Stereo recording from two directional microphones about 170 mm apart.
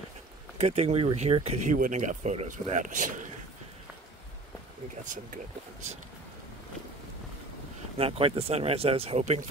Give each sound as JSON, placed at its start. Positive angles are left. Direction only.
{"t": 0.6, "sound": "speech", "side_deg": -40}
{"t": 1.8, "sound": "speech", "side_deg": -45}
{"t": 5.0, "sound": "speech", "side_deg": -50}
{"t": 8.0, "sound": "speech", "side_deg": -35}